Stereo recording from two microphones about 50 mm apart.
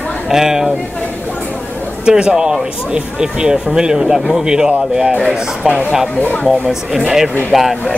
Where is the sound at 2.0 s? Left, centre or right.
Centre.